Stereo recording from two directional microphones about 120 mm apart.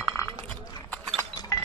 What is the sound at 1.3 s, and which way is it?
Chink, 30° left (ahead or behind).